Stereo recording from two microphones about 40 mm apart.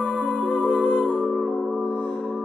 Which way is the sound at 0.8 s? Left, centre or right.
Left.